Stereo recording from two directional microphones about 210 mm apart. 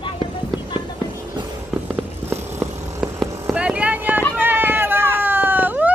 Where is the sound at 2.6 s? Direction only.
10° right (ahead or behind).